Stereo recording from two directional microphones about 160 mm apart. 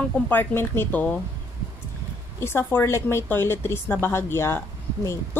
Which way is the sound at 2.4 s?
15° left (ahead or behind).